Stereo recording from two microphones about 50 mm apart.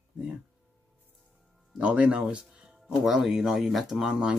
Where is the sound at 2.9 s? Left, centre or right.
Centre.